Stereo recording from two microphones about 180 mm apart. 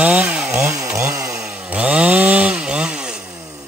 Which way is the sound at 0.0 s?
5° right (ahead or behind).